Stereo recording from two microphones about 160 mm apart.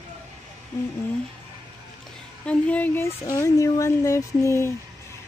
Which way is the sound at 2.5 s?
10° left (ahead or behind).